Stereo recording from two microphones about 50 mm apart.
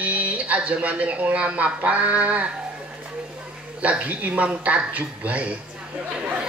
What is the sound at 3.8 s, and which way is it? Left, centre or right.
Speech, right.